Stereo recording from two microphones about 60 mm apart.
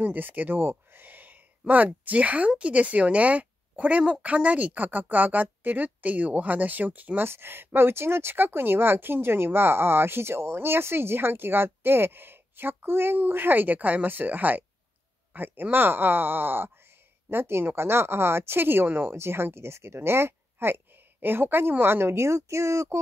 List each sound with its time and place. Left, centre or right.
0.0 s a woman's voice: right
7.2 s a woman's voice: right